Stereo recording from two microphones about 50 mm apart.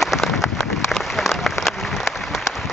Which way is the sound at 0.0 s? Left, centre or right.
Centre.